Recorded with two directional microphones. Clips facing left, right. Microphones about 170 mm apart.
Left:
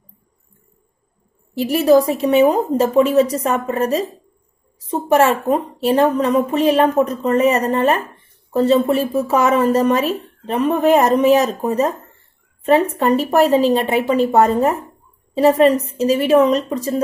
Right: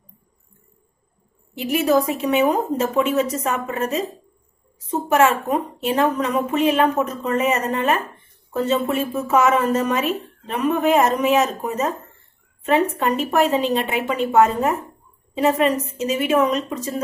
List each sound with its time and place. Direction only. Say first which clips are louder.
1.5 s a woman's voice: left 5 dB; 35° left (ahead or behind)